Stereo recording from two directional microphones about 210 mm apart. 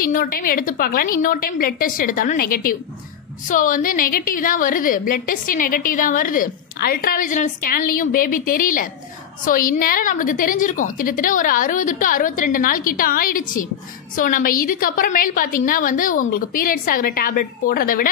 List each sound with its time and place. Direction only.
0.0 s a woman's voice: 45° left (ahead or behind)